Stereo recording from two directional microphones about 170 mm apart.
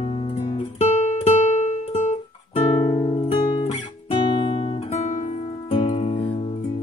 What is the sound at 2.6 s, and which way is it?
Music, 30° left (ahead or behind).